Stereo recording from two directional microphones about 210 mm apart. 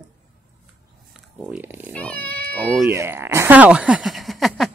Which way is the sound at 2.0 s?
5° left (ahead or behind).